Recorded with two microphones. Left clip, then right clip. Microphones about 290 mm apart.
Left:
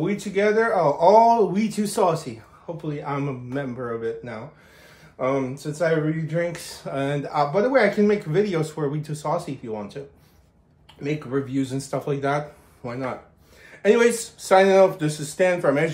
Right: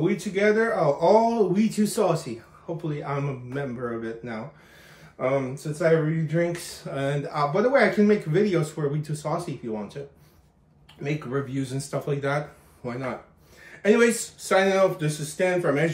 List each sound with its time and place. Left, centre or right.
0.0 s speech: centre
11.5 s speech: centre